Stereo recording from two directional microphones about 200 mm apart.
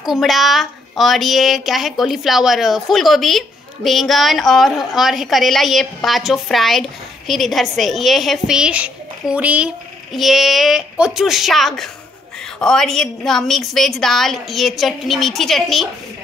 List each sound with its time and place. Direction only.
0.0 s speech: centre (ahead or behind)